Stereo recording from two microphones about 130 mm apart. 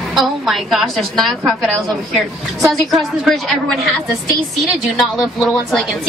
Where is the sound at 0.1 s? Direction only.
Centre (ahead or behind).